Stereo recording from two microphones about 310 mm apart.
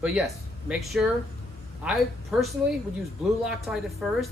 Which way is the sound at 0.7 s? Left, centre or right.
Centre.